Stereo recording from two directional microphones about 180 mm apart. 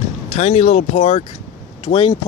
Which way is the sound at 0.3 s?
40° left (ahead or behind).